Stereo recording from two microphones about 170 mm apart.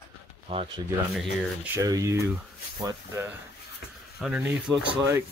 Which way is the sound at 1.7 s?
20° right (ahead or behind).